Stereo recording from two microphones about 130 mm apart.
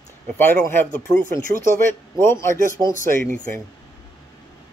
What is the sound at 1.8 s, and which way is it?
Speech, 20° left (ahead or behind).